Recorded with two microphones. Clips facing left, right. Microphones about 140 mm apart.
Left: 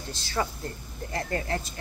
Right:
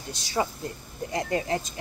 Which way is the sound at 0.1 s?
15° right (ahead or behind).